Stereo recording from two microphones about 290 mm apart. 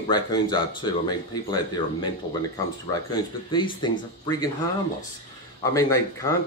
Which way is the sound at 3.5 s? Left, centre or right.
Centre.